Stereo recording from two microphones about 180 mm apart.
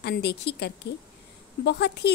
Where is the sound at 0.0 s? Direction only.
65° left (ahead or behind).